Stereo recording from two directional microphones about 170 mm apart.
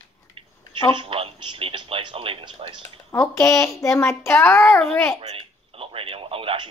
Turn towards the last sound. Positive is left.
turn(degrees=-30)  # may be behind; listen again after turning